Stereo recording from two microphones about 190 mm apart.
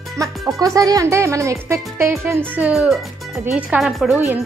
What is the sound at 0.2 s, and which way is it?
Speech, 15° right (ahead or behind).